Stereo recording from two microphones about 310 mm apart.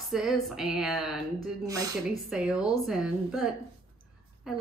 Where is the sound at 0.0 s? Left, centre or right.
Centre.